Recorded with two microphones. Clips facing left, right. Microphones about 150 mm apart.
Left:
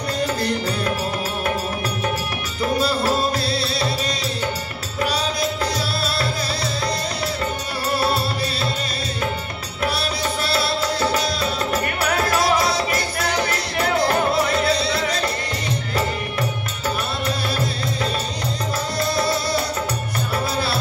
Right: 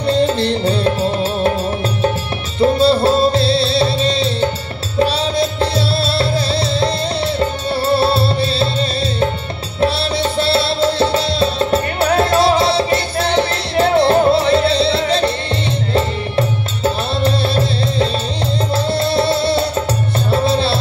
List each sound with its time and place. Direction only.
0.0 s music: 25° right (ahead or behind)
2.6 s music: 30° right (ahead or behind)
7.3 s music: 30° right (ahead or behind)
10.4 s music: 30° right (ahead or behind)